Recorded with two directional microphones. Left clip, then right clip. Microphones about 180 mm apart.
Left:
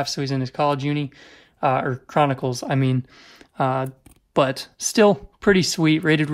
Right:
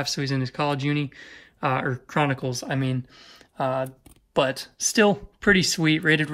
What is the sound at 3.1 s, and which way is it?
Speech, 40° left (ahead or behind).